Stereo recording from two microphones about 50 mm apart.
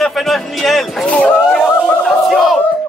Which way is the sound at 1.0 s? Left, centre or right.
Left.